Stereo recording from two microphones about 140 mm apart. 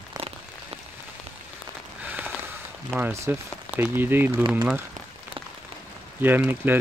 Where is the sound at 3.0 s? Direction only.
20° right (ahead or behind).